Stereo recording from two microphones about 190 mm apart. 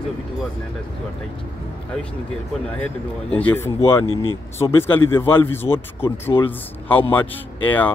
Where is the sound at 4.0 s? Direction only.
30° left (ahead or behind).